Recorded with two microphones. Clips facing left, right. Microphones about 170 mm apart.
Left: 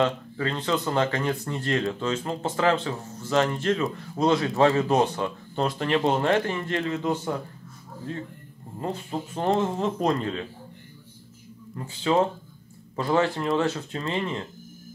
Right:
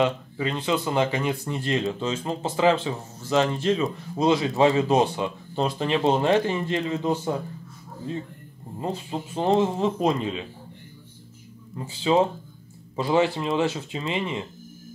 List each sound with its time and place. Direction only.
0.0 s speech: 15° right (ahead or behind)
8.7 s speech: 20° right (ahead or behind)
11.7 s speech: 15° right (ahead or behind)